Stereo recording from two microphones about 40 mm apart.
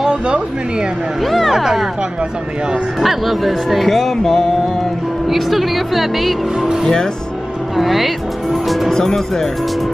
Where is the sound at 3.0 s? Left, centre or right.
Centre.